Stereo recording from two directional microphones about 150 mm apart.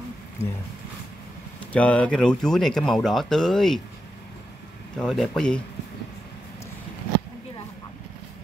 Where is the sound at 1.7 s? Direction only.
10° left (ahead or behind).